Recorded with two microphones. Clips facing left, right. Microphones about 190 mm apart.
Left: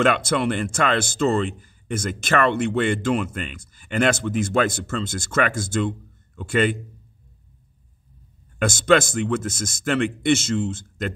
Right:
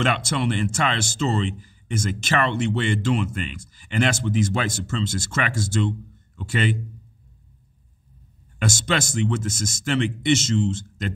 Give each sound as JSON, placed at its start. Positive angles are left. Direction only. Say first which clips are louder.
{"t": 0.0, "sound": "speech", "louder": "left 4 dB", "side_deg": 55}
{"t": 8.5, "sound": "speech", "louder": "left 7 dB", "side_deg": 55}